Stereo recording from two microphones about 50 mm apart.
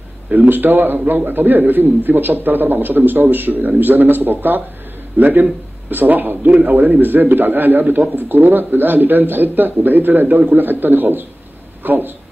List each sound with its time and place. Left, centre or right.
0.3 s speech: right